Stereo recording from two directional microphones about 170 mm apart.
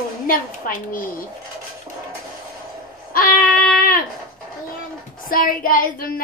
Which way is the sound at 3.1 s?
55° left (ahead or behind).